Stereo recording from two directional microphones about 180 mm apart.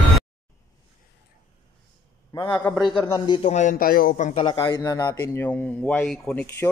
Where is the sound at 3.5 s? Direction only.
45° left (ahead or behind).